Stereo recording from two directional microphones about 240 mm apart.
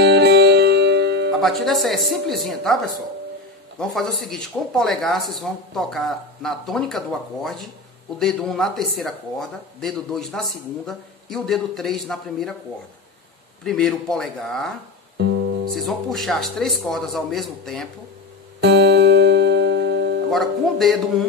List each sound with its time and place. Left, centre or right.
0.0 s music: right
1.4 s speech: centre
13.7 s speech: centre
15.1 s music: right
15.7 s speech: centre
18.6 s music: right
20.2 s speech: centre